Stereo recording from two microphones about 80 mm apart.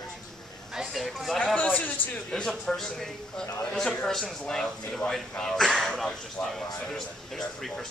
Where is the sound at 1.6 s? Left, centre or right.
Centre.